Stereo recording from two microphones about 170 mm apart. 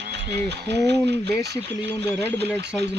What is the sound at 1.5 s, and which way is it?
Speech, 15° left (ahead or behind).